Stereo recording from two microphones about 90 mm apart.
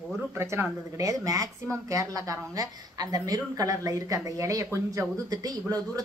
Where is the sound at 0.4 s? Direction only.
30° right (ahead or behind).